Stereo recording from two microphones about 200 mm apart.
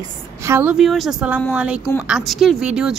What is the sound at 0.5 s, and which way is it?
Speech, 5° right (ahead or behind).